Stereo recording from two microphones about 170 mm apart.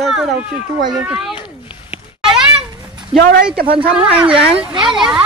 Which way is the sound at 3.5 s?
65° right (ahead or behind).